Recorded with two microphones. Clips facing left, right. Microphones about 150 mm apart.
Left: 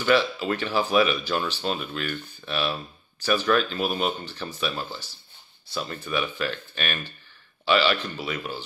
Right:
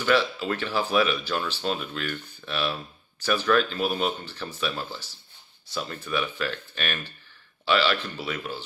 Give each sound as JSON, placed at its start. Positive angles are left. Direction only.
{"t": 0.0, "sound": "speech", "side_deg": 5}